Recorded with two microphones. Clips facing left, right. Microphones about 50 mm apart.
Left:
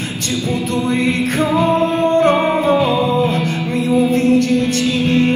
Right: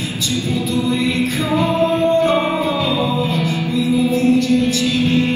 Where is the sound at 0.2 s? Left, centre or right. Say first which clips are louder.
Left 1 dB; left.